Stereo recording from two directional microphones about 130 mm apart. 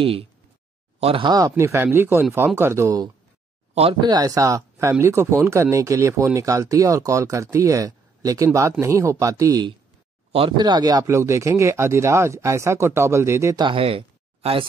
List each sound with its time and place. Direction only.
0.0 s speech: 45° right (ahead or behind)
1.2 s speech: 30° right (ahead or behind)
1.6 s speech: 20° right (ahead or behind)
10.3 s speech: 40° right (ahead or behind); by 13.6 s 20° right (ahead or behind)
13.6 s speech: 40° right (ahead or behind)